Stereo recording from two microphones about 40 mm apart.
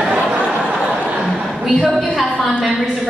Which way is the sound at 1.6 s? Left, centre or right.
Centre.